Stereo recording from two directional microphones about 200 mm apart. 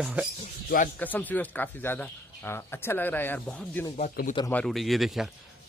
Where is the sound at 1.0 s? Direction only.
10° left (ahead or behind).